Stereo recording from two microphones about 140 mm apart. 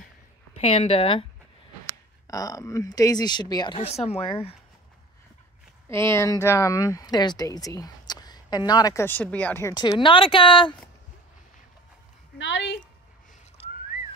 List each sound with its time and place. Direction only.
0.6 s speech: 45° left (ahead or behind)
2.2 s speech: 25° left (ahead or behind)
3.8 s speech: 50° left (ahead or behind)
5.9 s speech: 20° left (ahead or behind)
9.0 s speech: 10° left (ahead or behind)
9.8 s speech: 35° left (ahead or behind)